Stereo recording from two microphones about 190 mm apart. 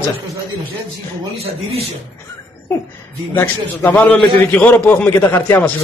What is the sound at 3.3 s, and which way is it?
A man's voice, 10° left (ahead or behind).